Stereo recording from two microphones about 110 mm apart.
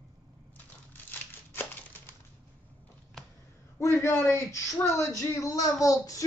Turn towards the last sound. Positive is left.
turn(degrees=30)  # may be behind; listen again after turning